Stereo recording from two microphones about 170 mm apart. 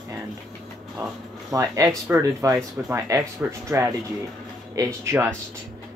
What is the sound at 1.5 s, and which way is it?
Speech, 20° right (ahead or behind).